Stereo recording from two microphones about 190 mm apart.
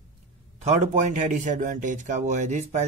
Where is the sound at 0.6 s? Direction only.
40° right (ahead or behind).